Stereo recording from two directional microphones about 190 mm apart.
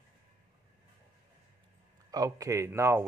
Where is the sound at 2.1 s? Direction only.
20° right (ahead or behind).